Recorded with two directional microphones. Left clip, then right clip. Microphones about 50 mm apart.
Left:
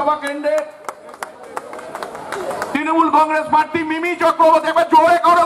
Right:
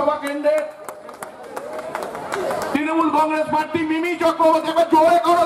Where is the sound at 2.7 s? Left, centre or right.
Left.